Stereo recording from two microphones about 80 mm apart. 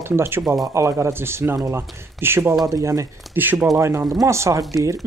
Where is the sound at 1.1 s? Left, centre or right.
Right.